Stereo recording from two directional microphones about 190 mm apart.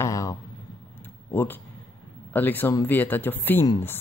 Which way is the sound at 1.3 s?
10° left (ahead or behind).